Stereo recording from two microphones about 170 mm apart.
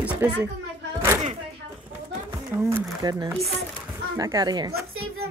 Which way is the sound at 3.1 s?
25° right (ahead or behind).